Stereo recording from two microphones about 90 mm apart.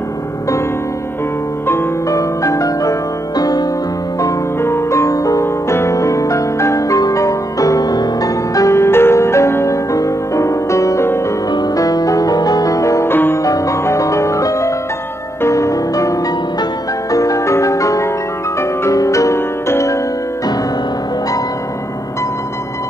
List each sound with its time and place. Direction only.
1.7 s music: 30° left (ahead or behind)
4.2 s music: 30° left (ahead or behind)
13.1 s music: 25° left (ahead or behind)
13.4 s music: 40° left (ahead or behind)